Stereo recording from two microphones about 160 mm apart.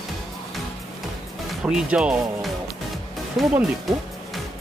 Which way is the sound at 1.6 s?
5° right (ahead or behind).